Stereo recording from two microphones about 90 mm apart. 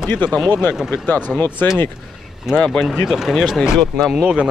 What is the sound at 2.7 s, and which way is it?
Speech, centre (ahead or behind).